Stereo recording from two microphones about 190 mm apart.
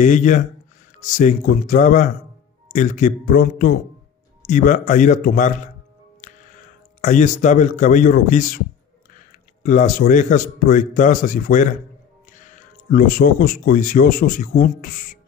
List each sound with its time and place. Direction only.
0.0 s a man's voice: 40° left (ahead or behind)
6.2 s music: 40° left (ahead or behind)
7.0 s a man's voice: 40° left (ahead or behind)